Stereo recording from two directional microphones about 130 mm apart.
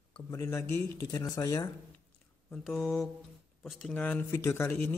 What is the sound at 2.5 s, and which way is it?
A man's voice, centre (ahead or behind).